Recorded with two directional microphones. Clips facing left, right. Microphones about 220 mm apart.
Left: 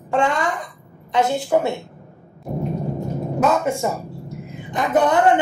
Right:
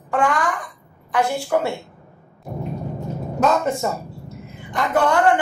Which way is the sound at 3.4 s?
10° left (ahead or behind).